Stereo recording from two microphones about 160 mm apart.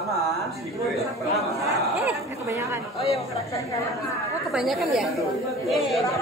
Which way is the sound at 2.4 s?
20° right (ahead or behind).